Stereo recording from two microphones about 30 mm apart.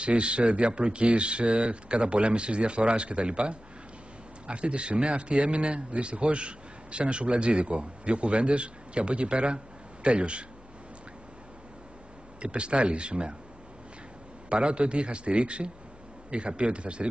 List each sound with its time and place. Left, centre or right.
0.0 s a man's voice: right
12.4 s a man's voice: right
14.5 s a man's voice: right